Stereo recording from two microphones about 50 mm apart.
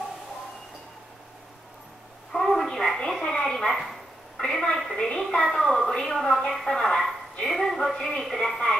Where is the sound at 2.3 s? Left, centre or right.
Centre.